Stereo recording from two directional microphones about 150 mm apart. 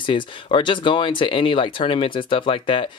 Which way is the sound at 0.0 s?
35° left (ahead or behind).